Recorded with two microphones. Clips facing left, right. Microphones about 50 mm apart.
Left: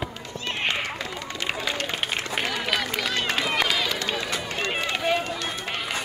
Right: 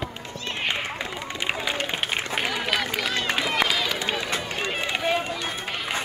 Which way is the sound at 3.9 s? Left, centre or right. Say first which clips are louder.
Right 1 dB; right.